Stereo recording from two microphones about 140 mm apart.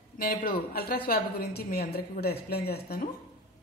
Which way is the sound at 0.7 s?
90° left.